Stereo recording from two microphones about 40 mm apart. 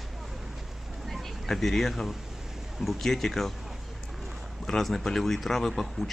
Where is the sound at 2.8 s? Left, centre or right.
Centre.